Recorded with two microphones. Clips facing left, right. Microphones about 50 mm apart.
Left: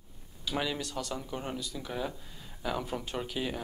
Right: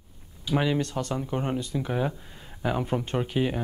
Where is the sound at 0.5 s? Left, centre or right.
Right.